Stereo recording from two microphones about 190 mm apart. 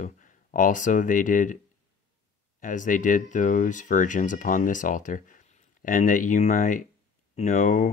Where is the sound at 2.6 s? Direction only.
45° left (ahead or behind).